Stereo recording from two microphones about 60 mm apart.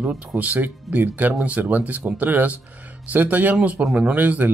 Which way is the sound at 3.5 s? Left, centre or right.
Centre.